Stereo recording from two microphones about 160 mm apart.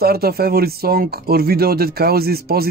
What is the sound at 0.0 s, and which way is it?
Speech, 75° right (ahead or behind).